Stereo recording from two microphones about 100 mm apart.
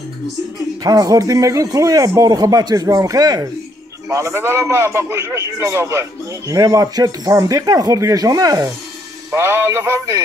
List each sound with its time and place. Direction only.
0.8 s a man's voice: 35° right (ahead or behind)
9.3 s music: 25° right (ahead or behind)